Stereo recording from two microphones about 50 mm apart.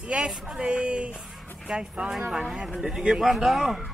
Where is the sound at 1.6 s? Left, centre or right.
Centre.